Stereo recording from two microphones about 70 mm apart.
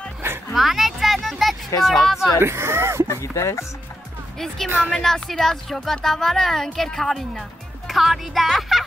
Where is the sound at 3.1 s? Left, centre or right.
Left.